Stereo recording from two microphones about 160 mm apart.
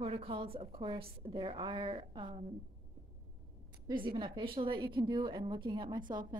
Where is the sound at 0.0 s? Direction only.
35° right (ahead or behind).